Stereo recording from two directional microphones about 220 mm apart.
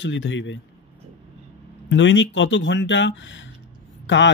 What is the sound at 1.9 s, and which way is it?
A man's voice, 55° left (ahead or behind).